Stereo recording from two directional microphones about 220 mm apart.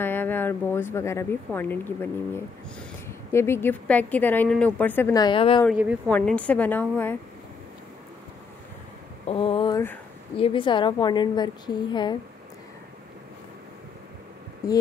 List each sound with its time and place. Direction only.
0.0 s a woman's voice: 10° left (ahead or behind)
3.1 s a woman's voice: 10° left (ahead or behind)
5.7 s speech: 5° right (ahead or behind)
6.0 s a woman's voice: 5° left (ahead or behind)
9.3 s a woman's voice: 25° left (ahead or behind)
14.6 s a woman's voice: 15° left (ahead or behind)